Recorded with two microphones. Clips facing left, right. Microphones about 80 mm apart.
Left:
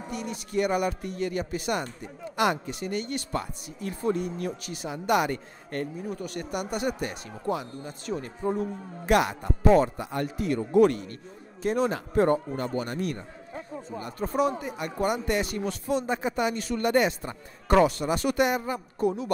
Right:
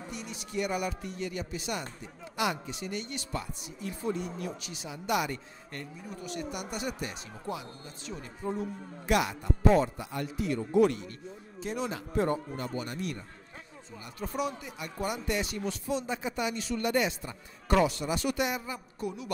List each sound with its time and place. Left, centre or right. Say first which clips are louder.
0.1 s speech: left 7 dB; left